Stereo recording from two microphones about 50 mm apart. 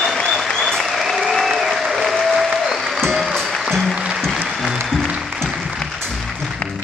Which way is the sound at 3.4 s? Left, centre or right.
Centre.